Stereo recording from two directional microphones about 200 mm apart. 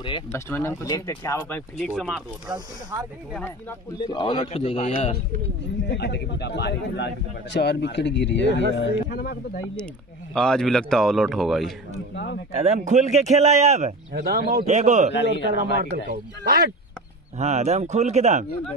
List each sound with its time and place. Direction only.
0.0 s a man's voice: 25° left (ahead or behind)
0.5 s speech: 10° left (ahead or behind)
1.9 s speech: centre (ahead or behind)
2.5 s speech: 20° right (ahead or behind)
4.0 s a man's voice: 25° left (ahead or behind)
5.9 s speech: 55° left (ahead or behind)
10.3 s speech: 5° left (ahead or behind)
12.5 s speech: 35° right (ahead or behind)
14.1 s speech: 50° right (ahead or behind)
14.7 s speech: 35° right (ahead or behind)
15.1 s speech: 60° left (ahead or behind)
15.8 s speech: 50° right (ahead or behind)
17.4 s speech: 35° right (ahead or behind)